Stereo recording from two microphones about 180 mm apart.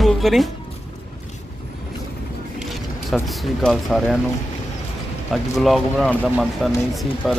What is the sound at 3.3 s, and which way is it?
Speech, centre (ahead or behind).